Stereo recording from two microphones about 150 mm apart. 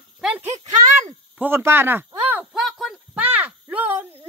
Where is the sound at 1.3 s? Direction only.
15° right (ahead or behind).